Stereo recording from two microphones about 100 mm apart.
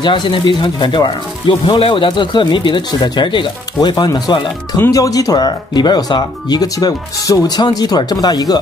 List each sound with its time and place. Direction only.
0.0 s speech: 50° left (ahead or behind)